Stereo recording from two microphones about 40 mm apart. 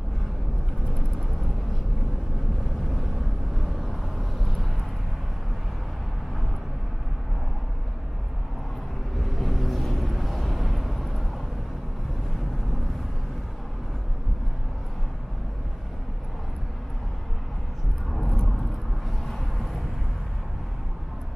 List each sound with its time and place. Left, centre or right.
3.6 s vehicle: centre
9.2 s vehicle: centre
19.2 s vehicle: centre